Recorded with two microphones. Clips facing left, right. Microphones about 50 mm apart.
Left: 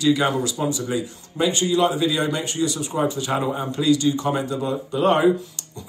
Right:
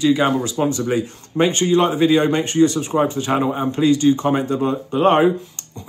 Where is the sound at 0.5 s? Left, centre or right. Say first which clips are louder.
Right 5 dB; right.